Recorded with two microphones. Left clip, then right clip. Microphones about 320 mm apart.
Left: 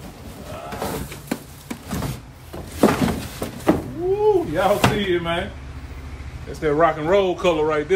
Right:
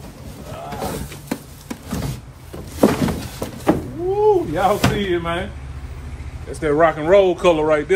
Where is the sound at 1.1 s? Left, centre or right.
Centre.